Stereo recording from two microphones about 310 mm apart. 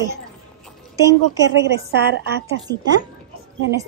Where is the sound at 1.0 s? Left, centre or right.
Centre.